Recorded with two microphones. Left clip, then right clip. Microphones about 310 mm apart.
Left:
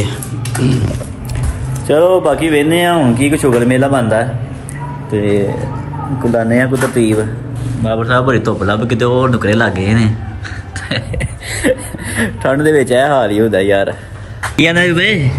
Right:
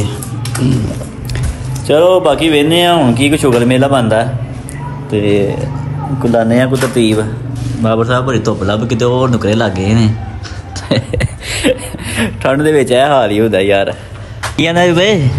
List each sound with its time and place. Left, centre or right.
1.9 s speech: centre
5.1 s speech: centre
6.2 s speech: centre
7.8 s speech: centre
8.1 s speech: centre
10.9 s a sound: centre
11.6 s speech: centre